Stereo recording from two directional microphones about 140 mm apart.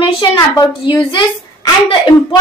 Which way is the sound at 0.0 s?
35° left (ahead or behind).